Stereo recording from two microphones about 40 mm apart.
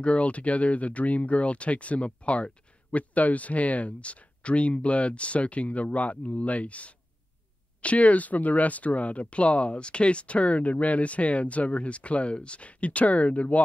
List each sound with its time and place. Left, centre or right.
0.0 s speech: left